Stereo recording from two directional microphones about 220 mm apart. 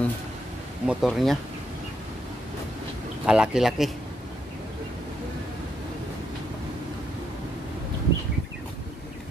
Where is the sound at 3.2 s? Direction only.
5° right (ahead or behind).